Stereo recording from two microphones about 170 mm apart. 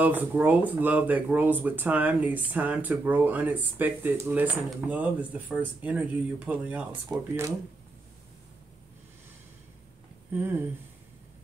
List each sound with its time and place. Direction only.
0.0 s speech: 10° right (ahead or behind)
7.1 s speech: 20° right (ahead or behind)